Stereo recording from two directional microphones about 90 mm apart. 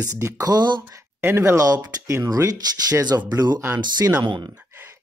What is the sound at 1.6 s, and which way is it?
Speech, 40° right (ahead or behind).